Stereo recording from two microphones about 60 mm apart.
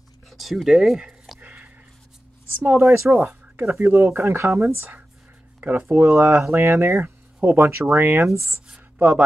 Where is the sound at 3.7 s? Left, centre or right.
Right.